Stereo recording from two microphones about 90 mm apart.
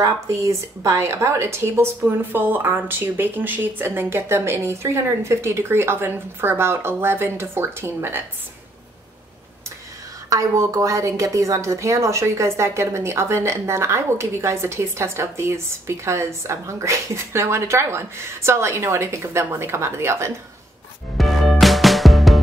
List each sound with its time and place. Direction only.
0.0 s speech: 35° right (ahead or behind)
10.3 s a woman's voice: 40° right (ahead or behind)
21.2 s music: centre (ahead or behind)